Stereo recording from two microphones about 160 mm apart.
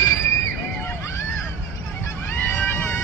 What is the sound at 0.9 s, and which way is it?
Vehicle, 15° left (ahead or behind).